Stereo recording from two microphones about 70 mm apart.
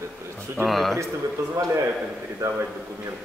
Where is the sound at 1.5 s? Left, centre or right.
Right.